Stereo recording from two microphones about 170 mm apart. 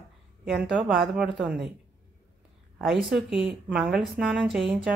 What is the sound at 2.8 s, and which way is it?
Speech, centre (ahead or behind).